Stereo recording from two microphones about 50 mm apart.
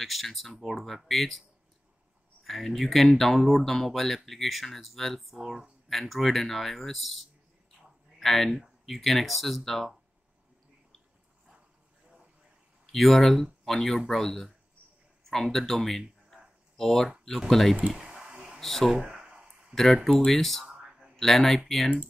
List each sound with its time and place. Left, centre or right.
0.0 s speech: centre
2.4 s speech: centre
12.9 s speech: centre
17.7 s speech: right
18.6 s speech: centre
18.9 s a sound: centre
19.7 s speech: centre